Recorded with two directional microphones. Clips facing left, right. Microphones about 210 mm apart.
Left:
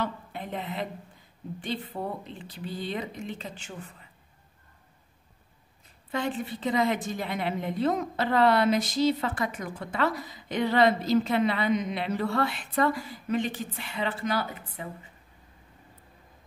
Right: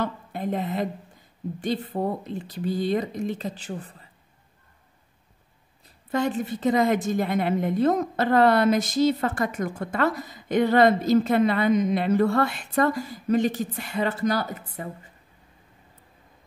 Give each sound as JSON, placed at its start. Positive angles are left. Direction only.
{"t": 0.0, "sound": "a sound", "side_deg": -45}
{"t": 1.6, "sound": "a woman's voice", "side_deg": -40}
{"t": 6.1, "sound": "a woman's voice", "side_deg": -45}